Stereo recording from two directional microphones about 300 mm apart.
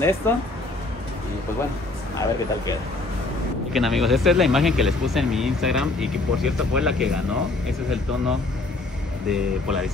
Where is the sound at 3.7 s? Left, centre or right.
Centre.